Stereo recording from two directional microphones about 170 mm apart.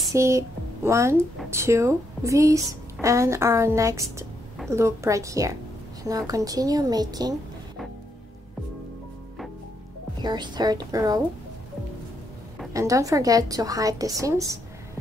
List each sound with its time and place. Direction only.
0.1 s a woman's voice: 15° right (ahead or behind)
10.2 s a woman's voice: 25° right (ahead or behind)
12.7 s a woman's voice: 20° right (ahead or behind)